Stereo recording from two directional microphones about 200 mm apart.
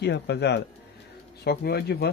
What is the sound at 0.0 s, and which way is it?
Speech, 55° left (ahead or behind).